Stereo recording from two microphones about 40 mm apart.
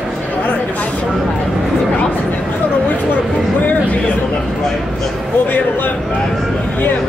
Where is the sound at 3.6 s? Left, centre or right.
Left.